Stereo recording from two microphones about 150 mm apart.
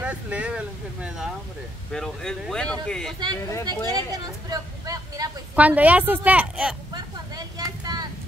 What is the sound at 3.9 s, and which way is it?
Vehicle, 25° right (ahead or behind).